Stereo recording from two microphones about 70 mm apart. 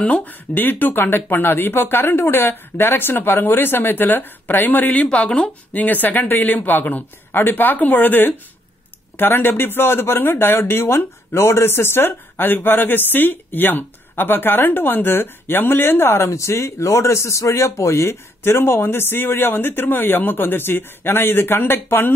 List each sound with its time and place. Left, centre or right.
0.0 s speech: left